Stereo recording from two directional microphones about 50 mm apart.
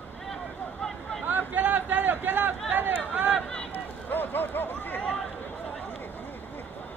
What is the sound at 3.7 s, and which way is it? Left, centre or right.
Run, left.